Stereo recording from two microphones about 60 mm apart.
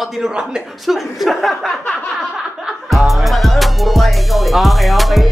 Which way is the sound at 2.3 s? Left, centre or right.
Centre.